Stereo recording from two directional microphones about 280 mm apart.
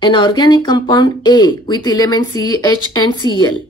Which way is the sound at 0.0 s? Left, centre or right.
Centre.